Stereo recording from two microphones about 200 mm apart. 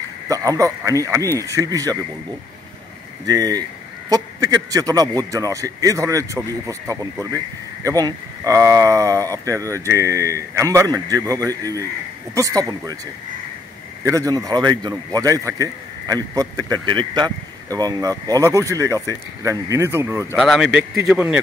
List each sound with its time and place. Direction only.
0.3 s a man's voice: 15° right (ahead or behind)
3.3 s a man's voice: 20° right (ahead or behind)
14.0 s a man's voice: 15° right (ahead or behind)
20.3 s speech: centre (ahead or behind)